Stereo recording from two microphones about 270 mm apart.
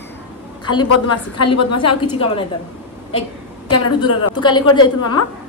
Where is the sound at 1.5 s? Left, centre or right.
Left.